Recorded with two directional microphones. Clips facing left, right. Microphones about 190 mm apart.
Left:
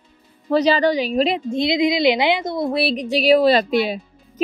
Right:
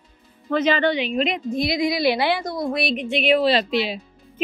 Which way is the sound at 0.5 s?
35° left (ahead or behind).